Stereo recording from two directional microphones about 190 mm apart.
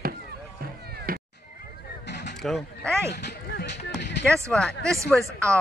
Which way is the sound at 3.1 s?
60° left (ahead or behind).